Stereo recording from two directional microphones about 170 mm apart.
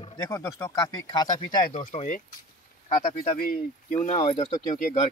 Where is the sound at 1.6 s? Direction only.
50° left (ahead or behind).